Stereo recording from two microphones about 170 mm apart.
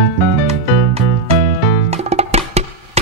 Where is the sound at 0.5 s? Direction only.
35° right (ahead or behind).